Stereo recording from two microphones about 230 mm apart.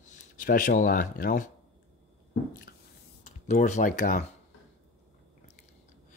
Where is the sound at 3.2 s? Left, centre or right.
Left.